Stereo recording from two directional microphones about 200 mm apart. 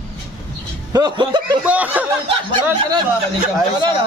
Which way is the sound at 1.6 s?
5° right (ahead or behind).